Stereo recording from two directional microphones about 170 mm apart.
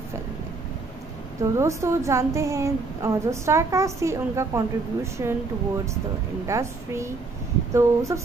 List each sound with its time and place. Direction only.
1.4 s a woman's voice: 15° right (ahead or behind)
6.4 s a woman's voice: 15° right (ahead or behind)